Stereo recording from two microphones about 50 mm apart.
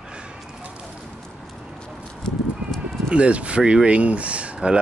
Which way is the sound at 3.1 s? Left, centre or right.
Right.